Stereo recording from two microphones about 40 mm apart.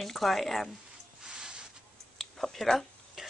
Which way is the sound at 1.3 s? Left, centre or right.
Centre.